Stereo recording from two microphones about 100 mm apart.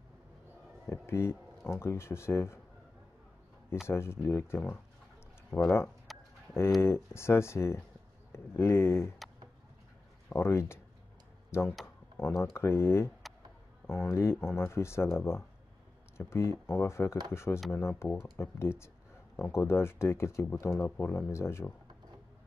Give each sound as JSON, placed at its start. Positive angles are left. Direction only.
{"t": 0.8, "sound": "speech", "side_deg": 25}
{"t": 3.8, "sound": "speech", "side_deg": 25}
{"t": 6.1, "sound": "a sound", "side_deg": 0}
{"t": 6.8, "sound": "speech", "side_deg": 25}
{"t": 10.3, "sound": "speech", "side_deg": 25}